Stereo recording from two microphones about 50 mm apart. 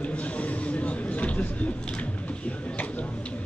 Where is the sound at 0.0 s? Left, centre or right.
Left.